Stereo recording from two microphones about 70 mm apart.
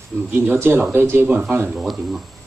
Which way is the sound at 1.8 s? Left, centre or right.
Centre.